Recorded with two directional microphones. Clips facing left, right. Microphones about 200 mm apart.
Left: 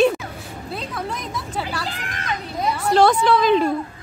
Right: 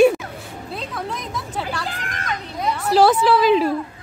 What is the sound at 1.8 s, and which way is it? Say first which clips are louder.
Speech: right 1 dB; 45° right (ahead or behind).